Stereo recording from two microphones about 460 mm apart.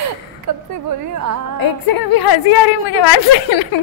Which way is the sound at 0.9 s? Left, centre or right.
Right.